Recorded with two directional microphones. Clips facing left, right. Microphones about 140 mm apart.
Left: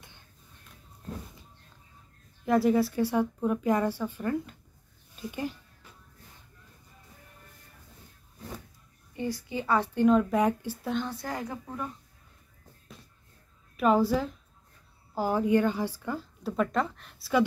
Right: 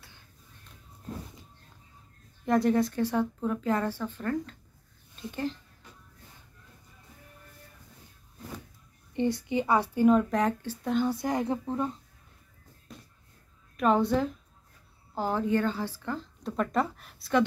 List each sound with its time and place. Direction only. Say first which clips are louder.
2.4 s speech: left 1 dB; 5° left (ahead or behind)
9.1 s speech: right 5 dB; 25° right (ahead or behind); by 10.2 s 5° right (ahead or behind)
10.3 s speech: left 2 dB; 10° left (ahead or behind)
10.9 s speech: right 5 dB; 10° right (ahead or behind); by 11.9 s 25° right (ahead or behind)
13.7 s a woman's voice: even; 5° left (ahead or behind)